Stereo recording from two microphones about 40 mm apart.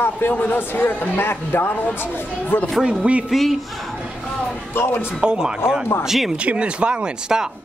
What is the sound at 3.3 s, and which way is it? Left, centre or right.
Speech, centre.